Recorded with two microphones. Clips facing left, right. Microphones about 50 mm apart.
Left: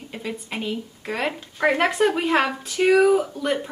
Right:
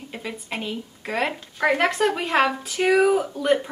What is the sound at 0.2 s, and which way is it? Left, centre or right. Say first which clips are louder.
Speech: left 2 dB; centre.